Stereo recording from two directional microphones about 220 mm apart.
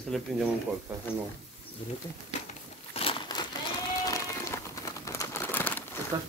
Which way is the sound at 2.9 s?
25° left (ahead or behind).